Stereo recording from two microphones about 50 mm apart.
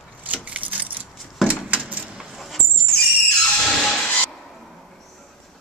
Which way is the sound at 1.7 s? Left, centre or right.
Right.